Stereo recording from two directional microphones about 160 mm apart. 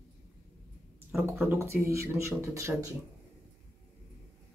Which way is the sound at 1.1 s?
15° right (ahead or behind).